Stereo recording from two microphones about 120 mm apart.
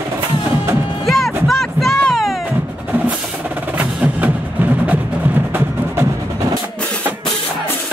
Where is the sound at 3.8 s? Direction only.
10° right (ahead or behind).